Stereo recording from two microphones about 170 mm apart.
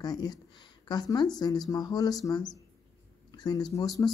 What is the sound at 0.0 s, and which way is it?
A woman's voice, 25° left (ahead or behind).